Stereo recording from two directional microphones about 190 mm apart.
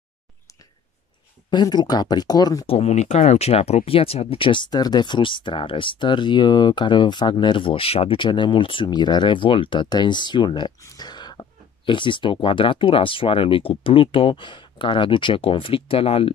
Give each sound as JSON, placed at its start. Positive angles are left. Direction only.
{"t": 1.5, "sound": "speech", "side_deg": 20}